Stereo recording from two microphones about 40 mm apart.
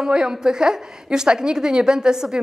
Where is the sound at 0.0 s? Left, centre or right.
Centre.